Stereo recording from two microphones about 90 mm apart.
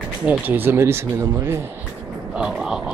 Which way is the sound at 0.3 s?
20° right (ahead or behind).